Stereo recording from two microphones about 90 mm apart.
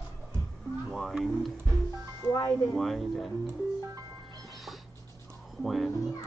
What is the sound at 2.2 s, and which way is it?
Music, 25° right (ahead or behind).